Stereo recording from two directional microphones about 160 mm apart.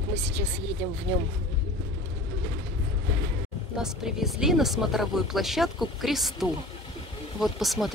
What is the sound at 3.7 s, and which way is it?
Speech, 5° right (ahead or behind).